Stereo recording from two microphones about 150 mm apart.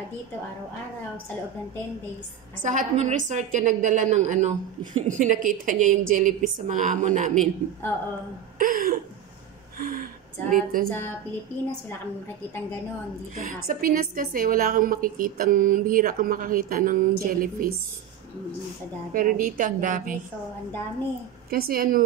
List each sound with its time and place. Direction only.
2.6 s a woman's voice: 55° right (ahead or behind)
8.5 s a sound: 70° right (ahead or behind)
9.8 s gasp: 65° right (ahead or behind)
10.5 s a woman's voice: 65° right (ahead or behind)
13.5 s a woman's voice: 70° right (ahead or behind)
19.1 s a woman's voice: 65° right (ahead or behind)
21.5 s a woman's voice: 85° right